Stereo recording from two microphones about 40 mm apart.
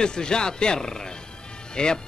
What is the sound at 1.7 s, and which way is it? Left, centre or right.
Speech, centre.